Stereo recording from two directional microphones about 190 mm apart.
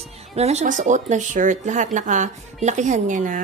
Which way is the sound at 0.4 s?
35° right (ahead or behind).